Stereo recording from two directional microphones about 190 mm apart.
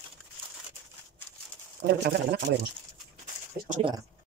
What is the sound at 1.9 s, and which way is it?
Speech, 60° right (ahead or behind).